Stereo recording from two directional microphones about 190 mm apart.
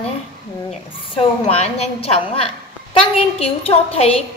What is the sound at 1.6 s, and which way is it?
A woman's voice, 35° left (ahead or behind).